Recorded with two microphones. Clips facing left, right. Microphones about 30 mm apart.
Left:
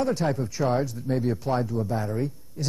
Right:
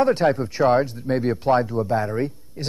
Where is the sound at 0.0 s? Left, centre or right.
Right.